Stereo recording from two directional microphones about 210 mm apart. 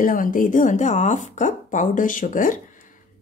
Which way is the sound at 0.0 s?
40° left (ahead or behind).